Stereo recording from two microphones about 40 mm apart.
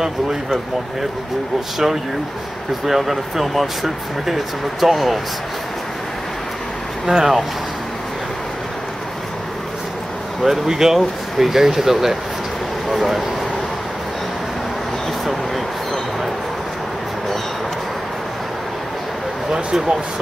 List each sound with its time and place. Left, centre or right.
2.8 s speech: centre
7.1 s speech: centre
10.4 s speech: centre
15.2 s vehicle: centre
19.5 s a sound: right